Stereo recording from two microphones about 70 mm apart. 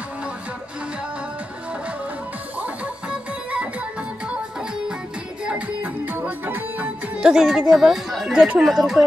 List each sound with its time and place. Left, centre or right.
2.6 s music: centre
5.4 s music: centre
7.2 s speech: centre